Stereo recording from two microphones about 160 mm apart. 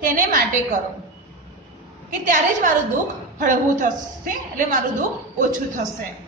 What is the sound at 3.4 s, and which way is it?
A woman's voice, 55° right (ahead or behind).